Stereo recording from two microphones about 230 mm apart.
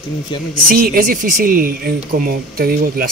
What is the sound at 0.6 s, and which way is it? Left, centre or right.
Speech, right.